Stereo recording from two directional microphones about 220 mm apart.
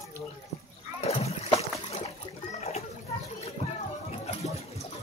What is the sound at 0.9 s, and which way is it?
Splash, 30° left (ahead or behind).